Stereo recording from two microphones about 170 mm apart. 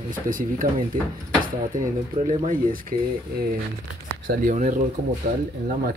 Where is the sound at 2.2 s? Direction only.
55° right (ahead or behind).